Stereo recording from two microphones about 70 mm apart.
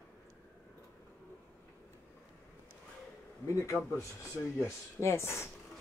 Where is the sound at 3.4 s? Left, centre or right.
Left.